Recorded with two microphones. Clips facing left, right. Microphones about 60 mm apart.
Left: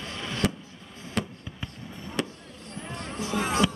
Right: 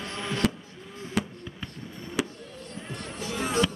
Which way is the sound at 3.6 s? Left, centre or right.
Centre.